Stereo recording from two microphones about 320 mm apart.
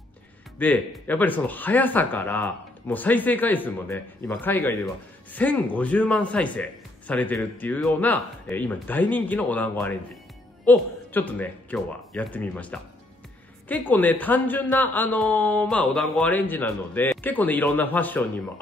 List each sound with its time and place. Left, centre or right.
0.6 s speech: centre